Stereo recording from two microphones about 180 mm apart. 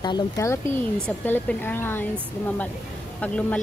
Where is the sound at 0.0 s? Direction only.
20° left (ahead or behind).